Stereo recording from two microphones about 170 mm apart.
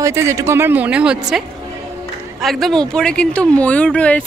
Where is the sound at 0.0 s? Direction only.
15° right (ahead or behind).